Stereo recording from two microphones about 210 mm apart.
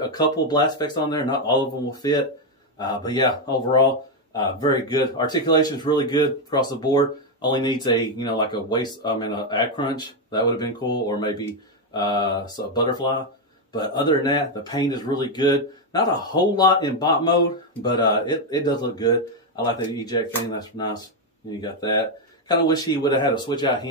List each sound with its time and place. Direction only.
0.0 s speech: 20° left (ahead or behind)